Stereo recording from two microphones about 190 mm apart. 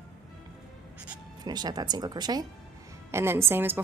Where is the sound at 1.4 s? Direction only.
20° right (ahead or behind).